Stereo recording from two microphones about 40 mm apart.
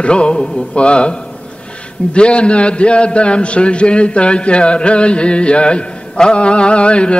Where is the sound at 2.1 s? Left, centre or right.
Left.